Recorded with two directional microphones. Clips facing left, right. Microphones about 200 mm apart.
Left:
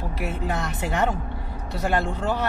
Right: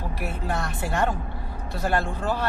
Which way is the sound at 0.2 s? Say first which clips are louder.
Left 2 dB; 20° left (ahead or behind).